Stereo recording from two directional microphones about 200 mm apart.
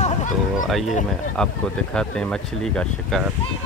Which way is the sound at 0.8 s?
35° left (ahead or behind).